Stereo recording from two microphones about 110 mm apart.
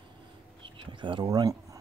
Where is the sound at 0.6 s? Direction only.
50° right (ahead or behind).